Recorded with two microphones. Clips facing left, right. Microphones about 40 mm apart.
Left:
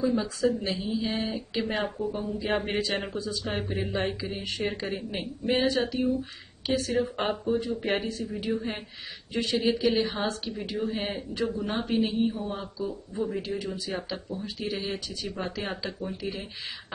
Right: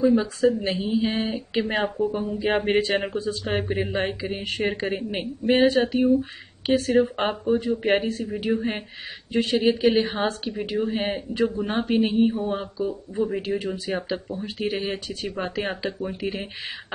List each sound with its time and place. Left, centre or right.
0.0 s speech: right
0.7 s a man's voice: right
2.1 s a man's voice: right
7.2 s a man's voice: right
9.3 s a man's voice: right
10.4 s a man's voice: right